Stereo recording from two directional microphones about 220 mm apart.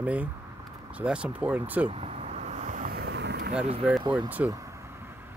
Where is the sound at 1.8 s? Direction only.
25° right (ahead or behind); by 3.5 s 50° right (ahead or behind).